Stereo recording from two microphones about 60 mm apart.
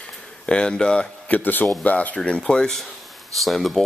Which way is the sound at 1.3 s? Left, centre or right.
Left.